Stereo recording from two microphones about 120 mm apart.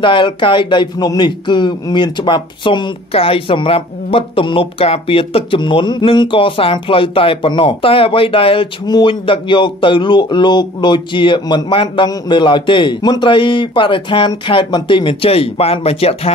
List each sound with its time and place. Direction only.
0.0 s a man's voice: 45° left (ahead or behind)